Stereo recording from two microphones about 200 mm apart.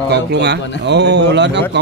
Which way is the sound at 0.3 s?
60° right (ahead or behind).